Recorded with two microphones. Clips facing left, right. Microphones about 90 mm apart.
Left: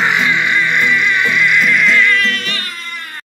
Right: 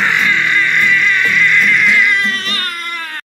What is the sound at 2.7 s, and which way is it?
Music, 65° right (ahead or behind).